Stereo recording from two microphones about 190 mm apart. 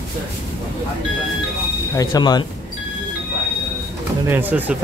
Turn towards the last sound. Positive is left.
turn(degrees=-10)  # may be behind; listen again after turning